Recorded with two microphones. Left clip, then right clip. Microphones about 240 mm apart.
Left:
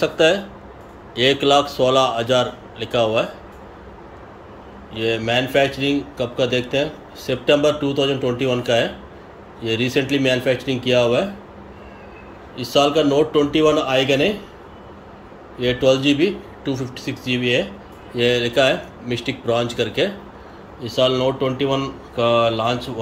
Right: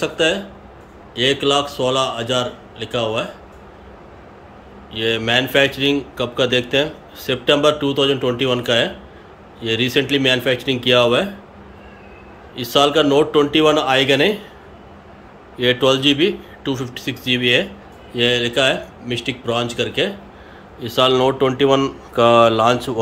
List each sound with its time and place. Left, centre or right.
0.0 s a man's voice: centre
4.9 s a man's voice: centre
12.5 s a man's voice: centre
15.5 s a man's voice: centre